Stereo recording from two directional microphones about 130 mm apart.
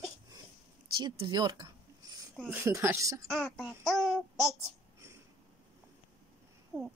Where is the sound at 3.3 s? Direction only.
Centre (ahead or behind).